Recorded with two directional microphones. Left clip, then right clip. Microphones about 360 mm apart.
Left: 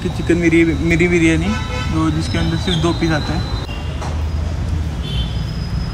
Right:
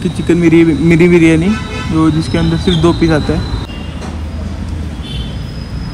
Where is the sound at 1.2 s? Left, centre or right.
Left.